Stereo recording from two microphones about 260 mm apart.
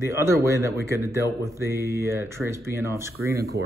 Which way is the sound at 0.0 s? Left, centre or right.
Centre.